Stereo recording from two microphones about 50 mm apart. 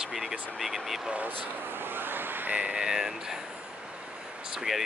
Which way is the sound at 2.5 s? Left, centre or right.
Centre.